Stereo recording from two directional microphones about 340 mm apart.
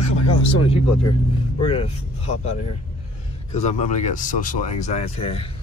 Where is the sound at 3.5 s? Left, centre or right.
Centre.